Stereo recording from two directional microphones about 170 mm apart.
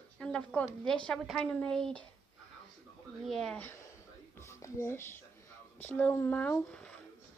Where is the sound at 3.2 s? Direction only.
Centre (ahead or behind).